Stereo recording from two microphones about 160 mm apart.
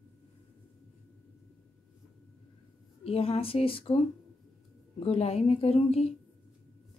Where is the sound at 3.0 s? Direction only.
40° left (ahead or behind).